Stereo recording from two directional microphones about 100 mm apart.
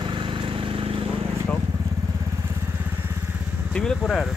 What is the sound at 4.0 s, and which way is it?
Speech, centre (ahead or behind).